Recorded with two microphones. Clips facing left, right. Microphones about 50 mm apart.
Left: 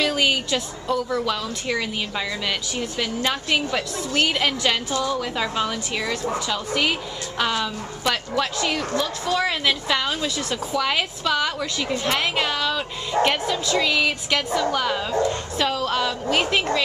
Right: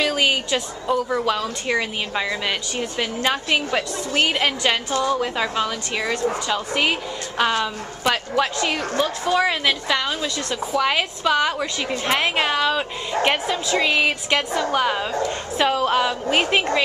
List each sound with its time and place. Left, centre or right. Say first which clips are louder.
0.0 s a woman's voice: right 1 dB; centre
6.5 s a woman's voice: even; centre
9.3 s a woman's voice: right 1 dB; centre
10.7 s a woman's voice: right 3 dB; centre